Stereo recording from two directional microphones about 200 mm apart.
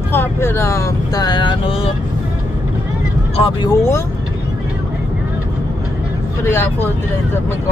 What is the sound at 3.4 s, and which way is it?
Speech, 25° left (ahead or behind).